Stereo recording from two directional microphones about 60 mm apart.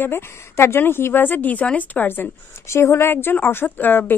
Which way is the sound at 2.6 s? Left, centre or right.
Left.